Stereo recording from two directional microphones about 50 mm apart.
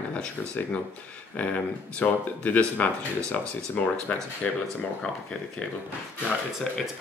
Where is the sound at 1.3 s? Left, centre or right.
Left.